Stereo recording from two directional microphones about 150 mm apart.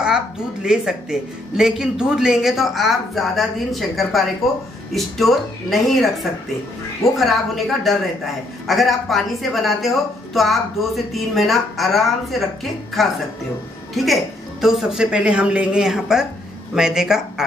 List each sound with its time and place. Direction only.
0.0 s a woman's voice: 5° right (ahead or behind)
7.2 s a woman's voice: centre (ahead or behind)